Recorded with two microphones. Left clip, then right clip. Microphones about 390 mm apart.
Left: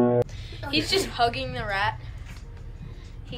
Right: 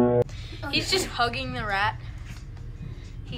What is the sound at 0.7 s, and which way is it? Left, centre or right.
A woman's voice, centre.